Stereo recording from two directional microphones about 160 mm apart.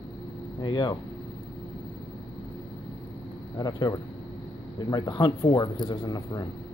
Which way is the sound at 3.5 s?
25° left (ahead or behind).